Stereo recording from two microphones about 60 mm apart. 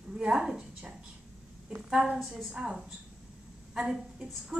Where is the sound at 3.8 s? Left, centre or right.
Centre.